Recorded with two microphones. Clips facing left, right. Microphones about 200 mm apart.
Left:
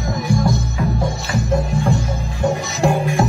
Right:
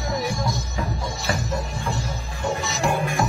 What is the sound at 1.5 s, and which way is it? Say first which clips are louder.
Music: left 9 dB; 55° left (ahead or behind).